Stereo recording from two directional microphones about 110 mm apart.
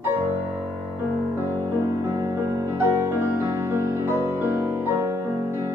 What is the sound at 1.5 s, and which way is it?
Music, 25° right (ahead or behind).